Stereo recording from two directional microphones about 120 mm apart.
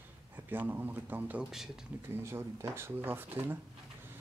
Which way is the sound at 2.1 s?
20° right (ahead or behind).